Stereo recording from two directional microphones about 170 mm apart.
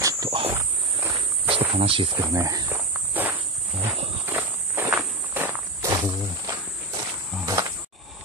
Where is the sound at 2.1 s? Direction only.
20° right (ahead or behind).